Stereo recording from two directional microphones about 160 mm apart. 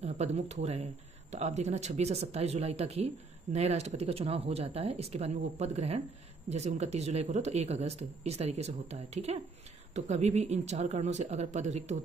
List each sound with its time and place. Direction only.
0.0 s speech: 45° right (ahead or behind)